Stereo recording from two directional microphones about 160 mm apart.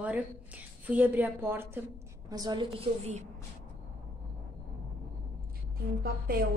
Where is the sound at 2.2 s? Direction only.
25° right (ahead or behind); by 3.3 s 40° right (ahead or behind).